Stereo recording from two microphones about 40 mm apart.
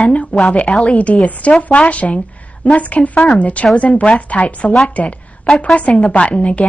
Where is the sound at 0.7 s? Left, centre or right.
Left.